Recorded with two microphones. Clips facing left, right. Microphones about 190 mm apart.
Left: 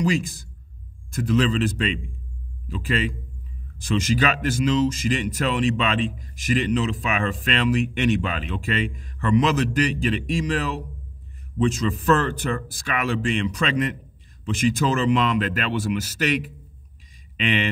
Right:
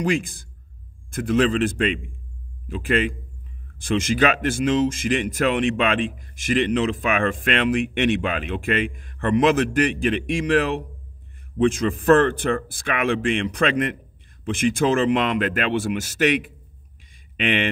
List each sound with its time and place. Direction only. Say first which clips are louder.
0.0 s speech: even; 55° right (ahead or behind)
16.3 s a man's voice: right 3 dB; 40° left (ahead or behind)
17.4 s speech: right 1 dB; 55° right (ahead or behind)